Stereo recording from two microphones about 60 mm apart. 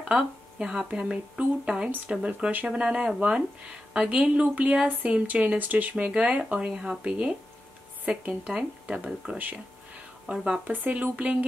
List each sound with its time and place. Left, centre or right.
0.1 s speech: centre
10.3 s speech: right